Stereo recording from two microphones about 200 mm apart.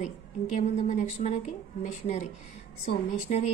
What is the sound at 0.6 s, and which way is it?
Speech, 35° left (ahead or behind).